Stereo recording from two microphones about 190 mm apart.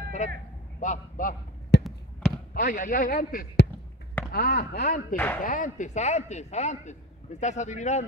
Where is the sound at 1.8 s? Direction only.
5° left (ahead or behind).